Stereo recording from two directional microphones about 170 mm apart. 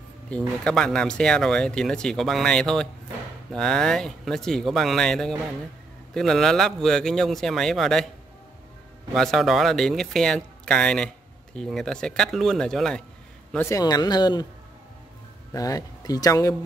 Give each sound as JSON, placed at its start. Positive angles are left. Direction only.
{"t": 0.3, "sound": "speech", "side_deg": 10}
{"t": 9.1, "sound": "speech", "side_deg": 0}
{"t": 13.5, "sound": "speech", "side_deg": 15}
{"t": 15.5, "sound": "speech", "side_deg": 20}